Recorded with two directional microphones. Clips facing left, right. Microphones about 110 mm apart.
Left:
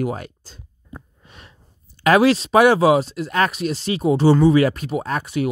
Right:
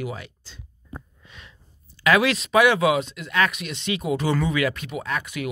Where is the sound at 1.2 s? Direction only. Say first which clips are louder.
Left 2 dB; 45° left (ahead or behind).